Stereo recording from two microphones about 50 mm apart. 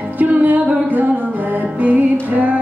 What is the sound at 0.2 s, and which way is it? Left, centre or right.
Music, right.